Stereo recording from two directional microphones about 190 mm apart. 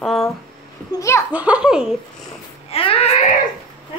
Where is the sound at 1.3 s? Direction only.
5° right (ahead or behind).